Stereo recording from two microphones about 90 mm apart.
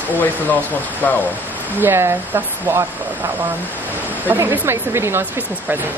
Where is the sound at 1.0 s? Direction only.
25° left (ahead or behind).